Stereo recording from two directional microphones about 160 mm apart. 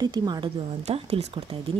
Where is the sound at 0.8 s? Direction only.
40° right (ahead or behind).